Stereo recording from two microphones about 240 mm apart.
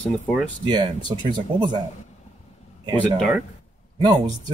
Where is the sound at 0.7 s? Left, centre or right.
Centre.